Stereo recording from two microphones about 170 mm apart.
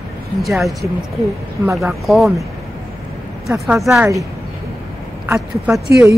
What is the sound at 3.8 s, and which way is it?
Speech, 5° right (ahead or behind).